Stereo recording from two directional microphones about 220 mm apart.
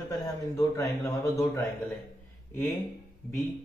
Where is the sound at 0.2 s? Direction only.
15° left (ahead or behind).